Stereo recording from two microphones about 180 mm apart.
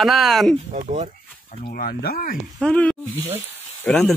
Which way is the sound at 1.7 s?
55° left (ahead or behind).